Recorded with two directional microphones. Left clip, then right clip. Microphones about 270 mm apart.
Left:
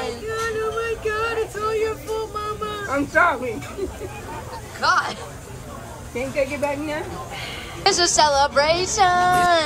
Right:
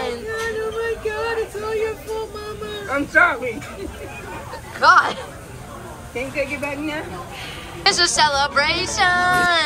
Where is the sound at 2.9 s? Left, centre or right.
Left.